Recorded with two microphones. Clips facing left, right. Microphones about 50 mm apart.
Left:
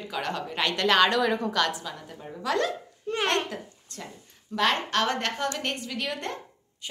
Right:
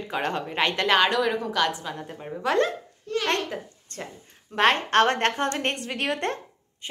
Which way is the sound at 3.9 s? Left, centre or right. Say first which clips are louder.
Right 4 dB; right.